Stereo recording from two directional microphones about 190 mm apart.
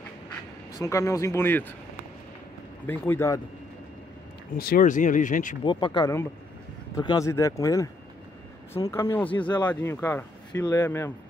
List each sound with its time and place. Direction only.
0.7 s speech: 15° left (ahead or behind)
2.9 s speech: 15° left (ahead or behind)
4.6 s speech: 50° left (ahead or behind)
5.6 s speech: 25° left (ahead or behind)
8.9 s speech: 10° left (ahead or behind)